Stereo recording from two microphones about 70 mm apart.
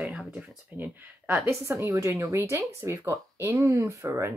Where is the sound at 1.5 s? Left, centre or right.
Right.